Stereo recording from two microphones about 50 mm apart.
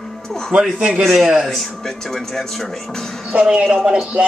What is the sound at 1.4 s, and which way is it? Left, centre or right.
Speech, centre.